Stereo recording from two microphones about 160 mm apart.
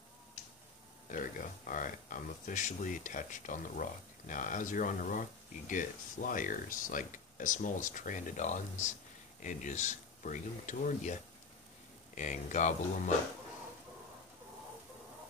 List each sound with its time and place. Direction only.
1.0 s speech: 55° left (ahead or behind)
12.2 s speech: 50° left (ahead or behind)